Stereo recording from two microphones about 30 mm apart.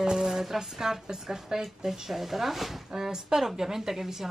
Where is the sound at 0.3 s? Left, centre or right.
Centre.